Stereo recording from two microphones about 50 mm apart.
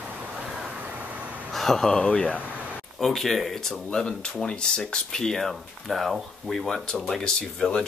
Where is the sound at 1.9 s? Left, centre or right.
Left.